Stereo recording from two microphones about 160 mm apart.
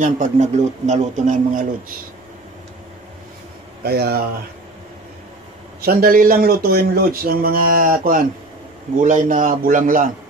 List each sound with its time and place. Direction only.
0.0 s speech: 50° right (ahead or behind)
3.8 s speech: 80° right
5.9 s a man's voice: 65° right (ahead or behind)